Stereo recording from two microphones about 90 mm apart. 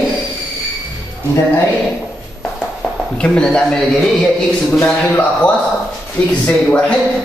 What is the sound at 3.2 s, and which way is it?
Speech, 10° left (ahead or behind).